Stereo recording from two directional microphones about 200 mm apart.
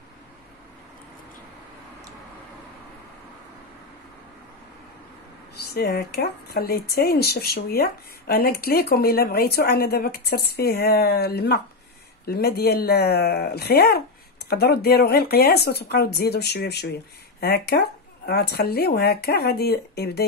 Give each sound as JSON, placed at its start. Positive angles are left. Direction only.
{"t": 5.6, "sound": "speech", "side_deg": 50}